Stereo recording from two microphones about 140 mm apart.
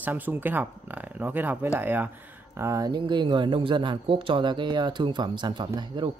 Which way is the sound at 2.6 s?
25° right (ahead or behind).